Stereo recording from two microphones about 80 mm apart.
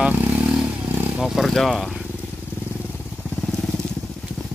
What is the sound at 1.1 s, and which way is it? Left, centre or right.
Purr, centre.